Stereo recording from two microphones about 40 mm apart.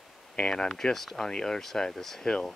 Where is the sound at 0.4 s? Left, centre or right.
Left.